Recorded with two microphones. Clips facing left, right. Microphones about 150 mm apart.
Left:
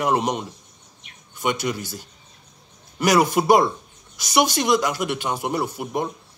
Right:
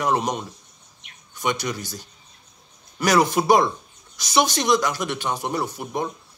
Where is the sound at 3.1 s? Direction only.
5° left (ahead or behind).